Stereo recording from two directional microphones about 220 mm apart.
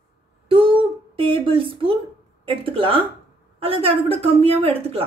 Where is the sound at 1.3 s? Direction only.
25° right (ahead or behind).